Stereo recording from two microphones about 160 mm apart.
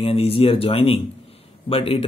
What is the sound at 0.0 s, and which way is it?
Speech, 40° left (ahead or behind).